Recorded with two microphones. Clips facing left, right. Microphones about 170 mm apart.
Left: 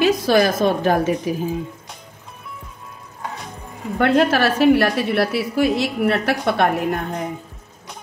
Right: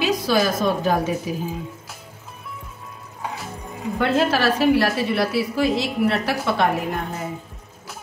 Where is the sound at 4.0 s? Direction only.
55° left (ahead or behind).